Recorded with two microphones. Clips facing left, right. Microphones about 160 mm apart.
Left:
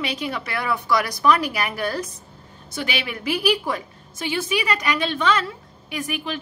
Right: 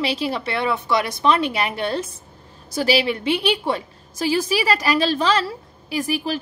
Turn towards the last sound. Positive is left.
turn(degrees=-35)  # may be behind; listen again after turning